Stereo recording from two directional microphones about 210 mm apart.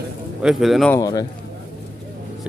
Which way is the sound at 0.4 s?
Centre (ahead or behind).